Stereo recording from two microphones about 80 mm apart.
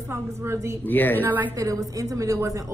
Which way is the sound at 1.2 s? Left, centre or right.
Right.